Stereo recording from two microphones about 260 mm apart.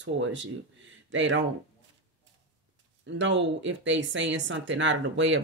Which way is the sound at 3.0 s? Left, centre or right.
Right.